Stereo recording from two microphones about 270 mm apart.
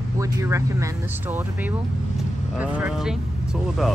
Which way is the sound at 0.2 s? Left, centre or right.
Centre.